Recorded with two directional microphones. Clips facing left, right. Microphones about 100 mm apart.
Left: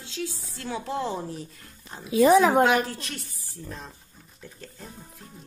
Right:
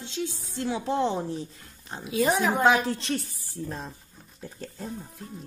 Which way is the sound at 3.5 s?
35° right (ahead or behind).